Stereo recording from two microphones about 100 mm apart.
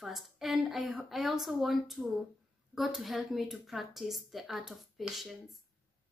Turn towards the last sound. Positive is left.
turn(degrees=-5)  # may be behind; listen again after turning